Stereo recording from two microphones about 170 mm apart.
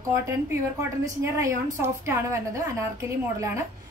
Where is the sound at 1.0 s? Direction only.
15° right (ahead or behind).